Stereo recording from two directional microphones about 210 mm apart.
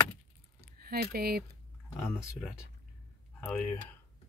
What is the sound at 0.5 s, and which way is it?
Keys jangling, 45° right (ahead or behind).